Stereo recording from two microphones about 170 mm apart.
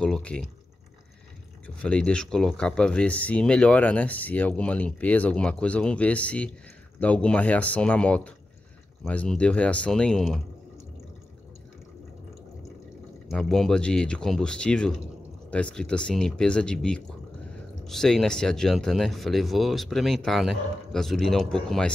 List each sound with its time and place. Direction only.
0.0 s a sound: 5° left (ahead or behind)
1.8 s speech: 5° left (ahead or behind)
13.3 s speech: centre (ahead or behind)